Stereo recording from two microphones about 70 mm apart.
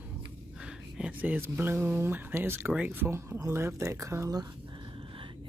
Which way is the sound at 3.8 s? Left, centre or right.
Right.